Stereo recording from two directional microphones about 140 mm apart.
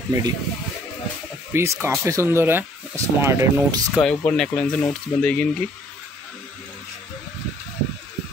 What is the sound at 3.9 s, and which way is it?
Speech, 5° left (ahead or behind).